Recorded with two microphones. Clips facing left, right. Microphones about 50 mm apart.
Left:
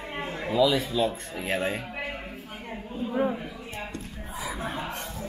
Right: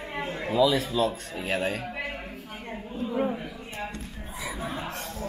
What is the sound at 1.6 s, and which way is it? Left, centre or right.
Speech, left.